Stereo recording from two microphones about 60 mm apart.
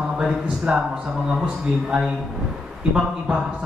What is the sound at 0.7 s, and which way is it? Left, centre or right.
A woman's voice, centre.